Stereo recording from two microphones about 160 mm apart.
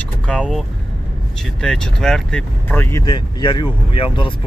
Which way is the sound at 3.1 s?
30° left (ahead or behind).